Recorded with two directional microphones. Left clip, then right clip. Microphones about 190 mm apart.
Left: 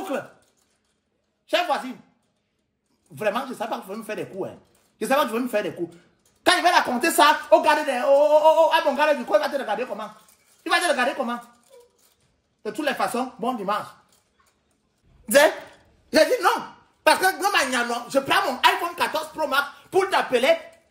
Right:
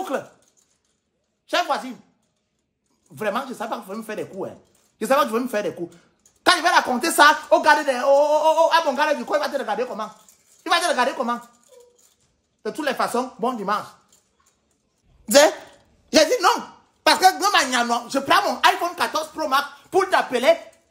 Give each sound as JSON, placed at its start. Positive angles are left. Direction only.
{"t": 0.1, "sound": "speech", "side_deg": -15}
{"t": 1.5, "sound": "speech", "side_deg": -5}
{"t": 3.2, "sound": "speech", "side_deg": -5}
{"t": 12.6, "sound": "speech", "side_deg": -10}
{"t": 16.1, "sound": "a sound", "side_deg": -20}
{"t": 17.0, "sound": "speech", "side_deg": -20}